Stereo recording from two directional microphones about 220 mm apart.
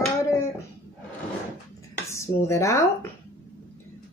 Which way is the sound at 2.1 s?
15° left (ahead or behind).